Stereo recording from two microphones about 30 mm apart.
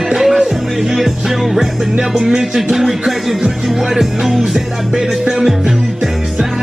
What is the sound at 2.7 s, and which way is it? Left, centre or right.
Music, centre.